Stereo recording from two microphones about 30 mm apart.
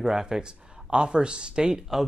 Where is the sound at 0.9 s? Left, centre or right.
Right.